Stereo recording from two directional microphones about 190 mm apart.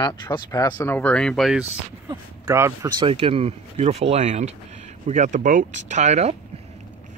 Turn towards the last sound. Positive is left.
turn(degrees=-35)  # may be behind; listen again after turning